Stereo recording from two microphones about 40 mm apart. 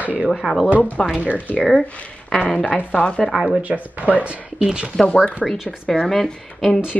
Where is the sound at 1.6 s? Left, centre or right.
Centre.